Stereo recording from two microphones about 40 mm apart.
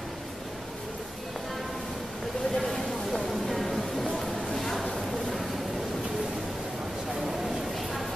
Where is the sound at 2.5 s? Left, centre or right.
Centre.